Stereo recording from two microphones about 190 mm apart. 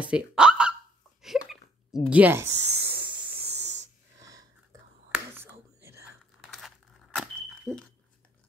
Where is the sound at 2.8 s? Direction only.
55° right (ahead or behind).